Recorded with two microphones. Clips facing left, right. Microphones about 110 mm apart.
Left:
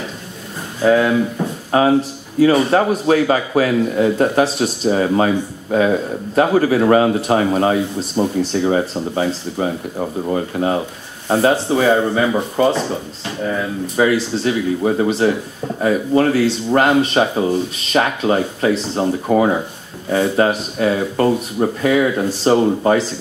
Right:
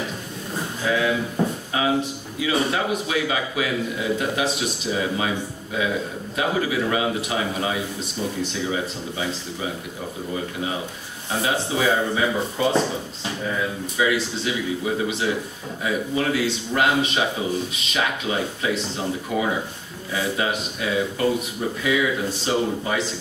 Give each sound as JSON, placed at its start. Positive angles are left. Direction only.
{"t": 0.8, "sound": "a man's voice", "side_deg": 45}
{"t": 13.9, "sound": "a man's voice", "side_deg": 40}